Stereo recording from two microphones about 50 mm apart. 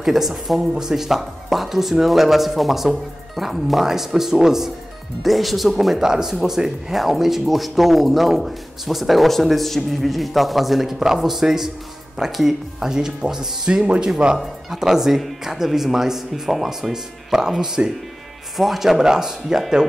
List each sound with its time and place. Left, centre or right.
0.0 s speech: centre